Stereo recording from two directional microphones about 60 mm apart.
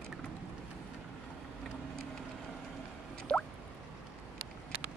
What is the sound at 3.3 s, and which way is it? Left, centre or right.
Drip, centre.